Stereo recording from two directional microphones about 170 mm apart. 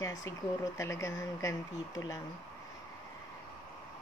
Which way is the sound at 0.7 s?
15° left (ahead or behind).